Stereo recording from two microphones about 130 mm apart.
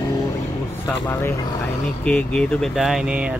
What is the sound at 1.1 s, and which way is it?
Speech, 15° left (ahead or behind).